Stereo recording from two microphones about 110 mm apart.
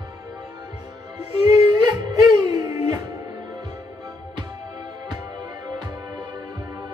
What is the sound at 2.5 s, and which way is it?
Music, 30° right (ahead or behind).